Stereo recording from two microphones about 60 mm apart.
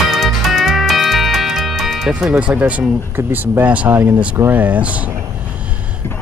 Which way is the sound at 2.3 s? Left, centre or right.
Right.